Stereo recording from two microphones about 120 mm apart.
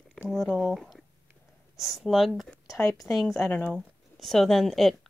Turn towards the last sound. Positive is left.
turn(degrees=0)  # may be behind; listen again after turning